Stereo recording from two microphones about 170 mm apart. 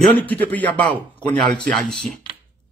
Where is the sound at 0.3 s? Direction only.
10° left (ahead or behind).